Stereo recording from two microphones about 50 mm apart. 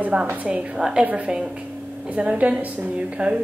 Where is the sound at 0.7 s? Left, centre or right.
Centre.